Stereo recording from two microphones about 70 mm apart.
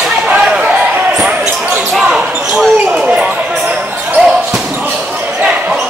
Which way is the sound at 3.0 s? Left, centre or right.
Centre.